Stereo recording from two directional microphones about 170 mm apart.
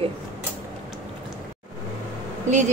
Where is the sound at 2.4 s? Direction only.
45° right (ahead or behind).